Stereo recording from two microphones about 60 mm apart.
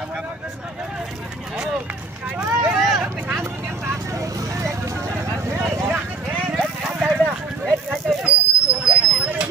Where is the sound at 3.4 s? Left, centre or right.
Right.